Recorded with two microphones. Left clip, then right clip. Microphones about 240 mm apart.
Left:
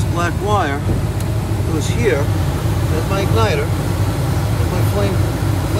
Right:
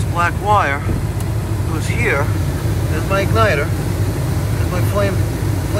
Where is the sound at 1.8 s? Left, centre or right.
Centre.